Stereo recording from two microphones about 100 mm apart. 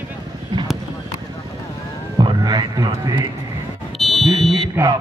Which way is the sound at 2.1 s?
45° right (ahead or behind).